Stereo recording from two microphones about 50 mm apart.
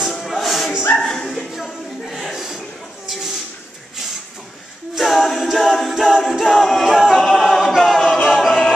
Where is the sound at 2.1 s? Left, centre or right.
Centre.